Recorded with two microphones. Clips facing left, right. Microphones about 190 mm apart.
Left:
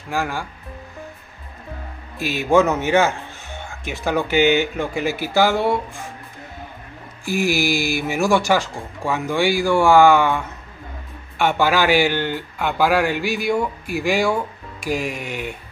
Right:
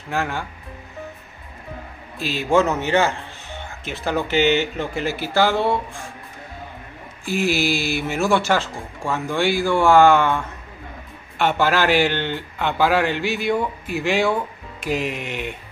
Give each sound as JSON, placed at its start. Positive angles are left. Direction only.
{"t": 0.1, "sound": "speech", "side_deg": 5}
{"t": 2.1, "sound": "speech", "side_deg": 15}
{"t": 7.2, "sound": "speech", "side_deg": 15}